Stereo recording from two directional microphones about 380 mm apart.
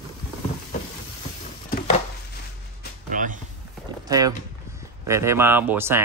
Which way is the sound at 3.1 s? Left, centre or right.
Right.